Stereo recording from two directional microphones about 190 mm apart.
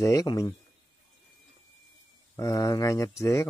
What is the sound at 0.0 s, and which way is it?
Speech, 15° left (ahead or behind).